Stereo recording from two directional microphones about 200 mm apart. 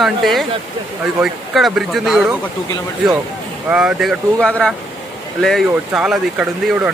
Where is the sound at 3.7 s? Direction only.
5° right (ahead or behind).